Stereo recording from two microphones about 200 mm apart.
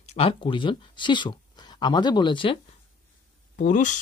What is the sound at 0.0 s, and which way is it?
Speech, 30° left (ahead or behind).